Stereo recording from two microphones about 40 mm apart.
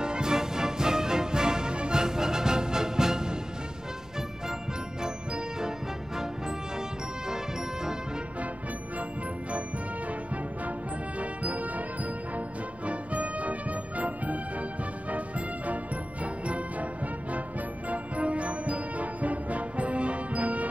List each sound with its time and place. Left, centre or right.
0.0 s music: centre
5.0 s music: centre
7.2 s music: centre
10.0 s music: right